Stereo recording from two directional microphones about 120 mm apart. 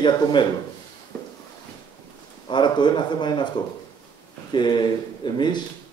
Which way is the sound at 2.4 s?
40° left (ahead or behind).